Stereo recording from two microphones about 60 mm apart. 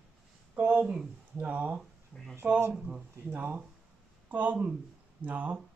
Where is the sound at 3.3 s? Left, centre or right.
Right.